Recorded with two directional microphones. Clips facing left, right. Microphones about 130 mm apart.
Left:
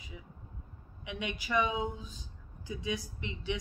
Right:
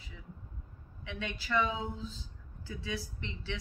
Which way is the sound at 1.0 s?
15° left (ahead or behind).